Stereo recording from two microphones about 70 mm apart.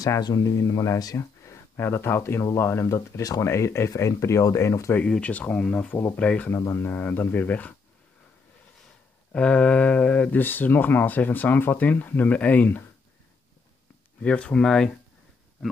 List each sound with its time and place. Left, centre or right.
0.2 s speech: left
1.1 s speech: left
3.4 s speech: left
5.0 s speech: centre
6.5 s speech: left
9.3 s speech: centre
14.2 s speech: centre